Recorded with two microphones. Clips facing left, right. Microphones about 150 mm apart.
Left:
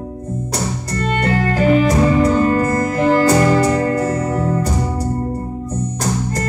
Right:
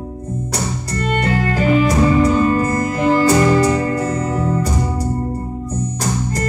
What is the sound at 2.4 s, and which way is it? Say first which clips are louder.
Music: left 1 dB; 50° left (ahead or behind).